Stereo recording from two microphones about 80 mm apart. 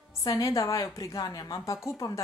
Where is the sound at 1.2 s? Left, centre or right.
Left.